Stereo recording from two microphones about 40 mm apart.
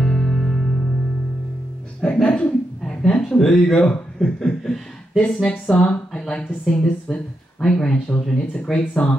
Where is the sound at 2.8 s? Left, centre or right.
Centre.